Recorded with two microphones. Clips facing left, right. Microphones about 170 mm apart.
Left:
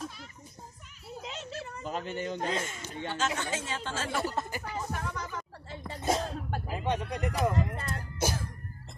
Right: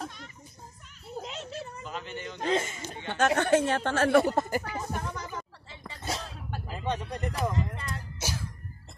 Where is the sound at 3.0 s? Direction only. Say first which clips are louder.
Right 8 dB; 60° right (ahead or behind).